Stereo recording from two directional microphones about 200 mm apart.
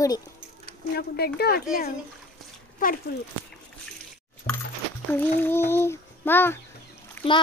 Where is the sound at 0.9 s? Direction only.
50° left (ahead or behind).